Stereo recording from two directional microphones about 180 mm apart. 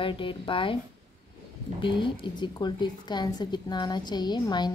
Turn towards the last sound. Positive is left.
turn(degrees=25)  # may be behind; listen again after turning